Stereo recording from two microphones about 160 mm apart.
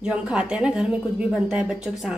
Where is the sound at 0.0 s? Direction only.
5° right (ahead or behind).